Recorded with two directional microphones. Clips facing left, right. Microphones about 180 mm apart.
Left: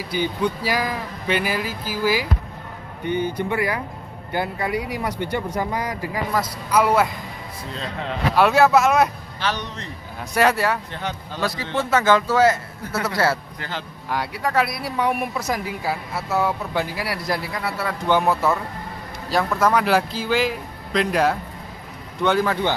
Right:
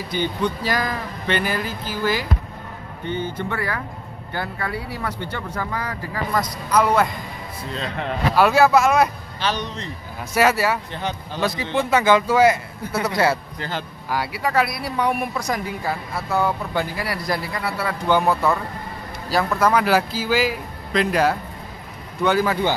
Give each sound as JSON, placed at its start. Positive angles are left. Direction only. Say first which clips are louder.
{"t": 0.1, "sound": "speech", "louder": "even", "side_deg": 10}
{"t": 8.4, "sound": "speech", "louder": "even", "side_deg": 0}
{"t": 9.4, "sound": "a man's voice", "louder": "right 2 dB", "side_deg": -30}
{"t": 10.3, "sound": "speech", "louder": "right 1 dB", "side_deg": -5}
{"t": 11.0, "sound": "a man's voice", "louder": "right 2 dB", "side_deg": -20}
{"t": 13.6, "sound": "a man's voice", "louder": "right 3 dB", "side_deg": -45}
{"t": 14.0, "sound": "speech", "louder": "even", "side_deg": -5}